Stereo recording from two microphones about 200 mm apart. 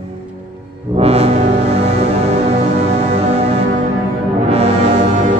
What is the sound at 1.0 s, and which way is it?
Music, 30° right (ahead or behind).